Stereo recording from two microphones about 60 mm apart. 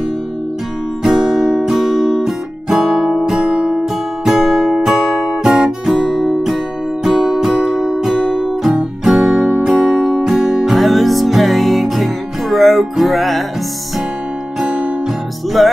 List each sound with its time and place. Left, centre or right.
1.0 s guitar: centre
14.6 s music: centre
15.6 s music: centre